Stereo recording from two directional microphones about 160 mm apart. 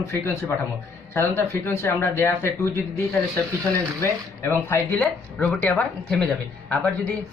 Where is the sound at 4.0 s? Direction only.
15° left (ahead or behind).